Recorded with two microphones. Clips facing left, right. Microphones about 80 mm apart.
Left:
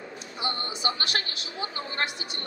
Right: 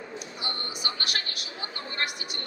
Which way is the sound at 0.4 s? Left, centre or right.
Left.